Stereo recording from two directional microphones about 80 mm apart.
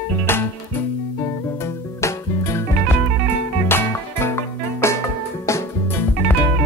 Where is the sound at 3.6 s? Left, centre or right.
Left.